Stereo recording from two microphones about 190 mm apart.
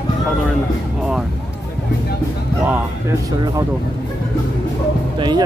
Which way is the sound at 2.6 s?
10° right (ahead or behind).